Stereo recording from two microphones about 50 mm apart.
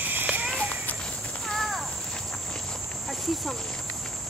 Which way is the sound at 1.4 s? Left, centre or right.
Centre.